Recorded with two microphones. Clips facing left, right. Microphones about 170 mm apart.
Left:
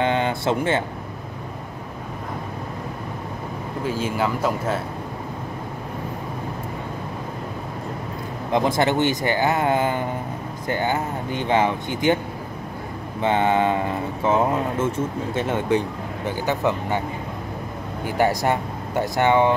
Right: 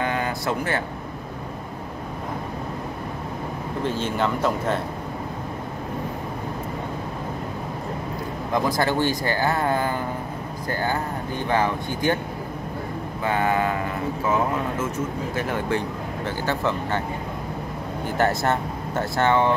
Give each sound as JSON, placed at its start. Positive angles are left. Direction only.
{"t": 0.0, "sound": "a sound", "side_deg": 25}
{"t": 3.8, "sound": "speech", "side_deg": 5}
{"t": 8.5, "sound": "speech", "side_deg": 20}
{"t": 13.2, "sound": "speech", "side_deg": 25}
{"t": 18.0, "sound": "speech", "side_deg": 10}